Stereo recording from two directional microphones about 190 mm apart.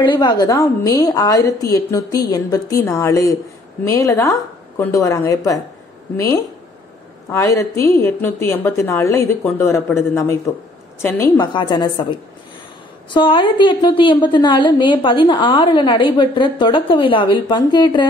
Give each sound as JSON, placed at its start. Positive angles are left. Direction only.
{"t": 0.0, "sound": "a woman's voice", "side_deg": 25}
{"t": 11.3, "sound": "a woman's voice", "side_deg": 25}